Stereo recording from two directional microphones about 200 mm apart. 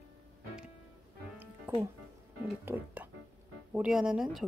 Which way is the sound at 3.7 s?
5° right (ahead or behind).